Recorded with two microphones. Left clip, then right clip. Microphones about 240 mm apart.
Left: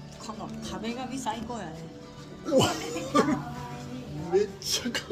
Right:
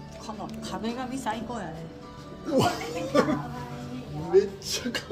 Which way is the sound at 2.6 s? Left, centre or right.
Centre.